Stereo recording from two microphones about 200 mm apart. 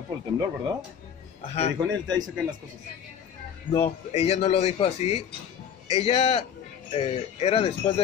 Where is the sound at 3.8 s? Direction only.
30° left (ahead or behind).